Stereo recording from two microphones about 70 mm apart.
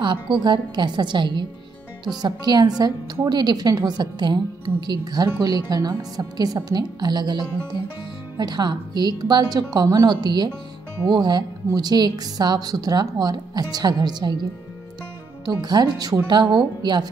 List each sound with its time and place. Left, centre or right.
0.1 s a woman's voice: right
3.3 s a woman's voice: right
10.0 s a woman's voice: right
15.4 s a woman's voice: right